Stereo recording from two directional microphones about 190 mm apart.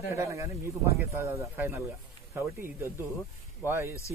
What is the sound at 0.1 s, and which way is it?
Speech, 15° right (ahead or behind).